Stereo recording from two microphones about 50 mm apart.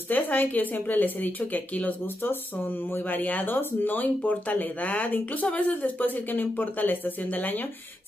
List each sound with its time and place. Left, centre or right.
0.1 s speech: left